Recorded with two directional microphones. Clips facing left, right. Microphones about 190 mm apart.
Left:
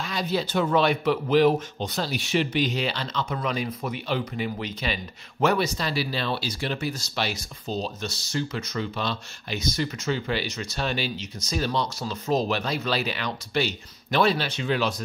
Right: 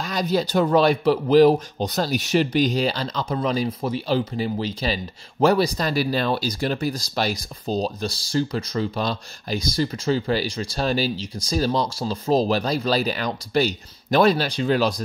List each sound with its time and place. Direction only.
0.0 s speech: 40° right (ahead or behind)